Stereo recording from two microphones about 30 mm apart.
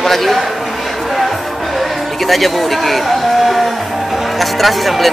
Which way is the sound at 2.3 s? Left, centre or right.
Centre.